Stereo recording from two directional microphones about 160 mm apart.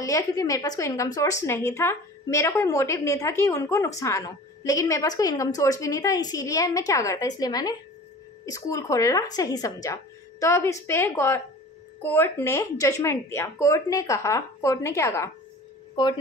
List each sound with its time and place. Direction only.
0.0 s a woman's voice: 20° left (ahead or behind)